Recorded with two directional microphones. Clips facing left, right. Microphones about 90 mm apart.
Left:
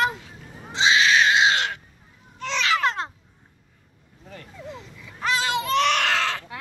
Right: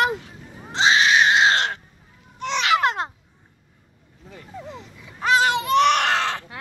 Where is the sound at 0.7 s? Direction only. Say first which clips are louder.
Right 2 dB; 30° right (ahead or behind).